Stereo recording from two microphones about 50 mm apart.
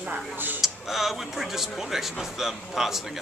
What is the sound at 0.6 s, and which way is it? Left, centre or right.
Speech, centre.